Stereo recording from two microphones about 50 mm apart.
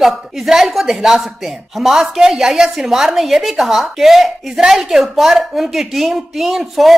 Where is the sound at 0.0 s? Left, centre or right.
Centre.